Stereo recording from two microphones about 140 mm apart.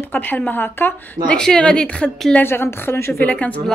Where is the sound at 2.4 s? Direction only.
15° left (ahead or behind).